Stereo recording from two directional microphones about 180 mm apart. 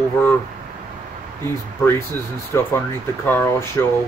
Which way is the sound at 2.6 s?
10° left (ahead or behind).